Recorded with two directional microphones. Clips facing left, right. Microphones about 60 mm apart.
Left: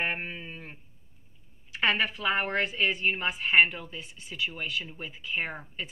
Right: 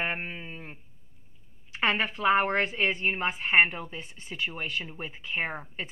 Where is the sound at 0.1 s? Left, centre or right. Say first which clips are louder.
Even; centre.